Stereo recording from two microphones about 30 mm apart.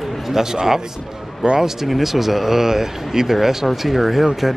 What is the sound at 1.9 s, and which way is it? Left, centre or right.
Speech, centre.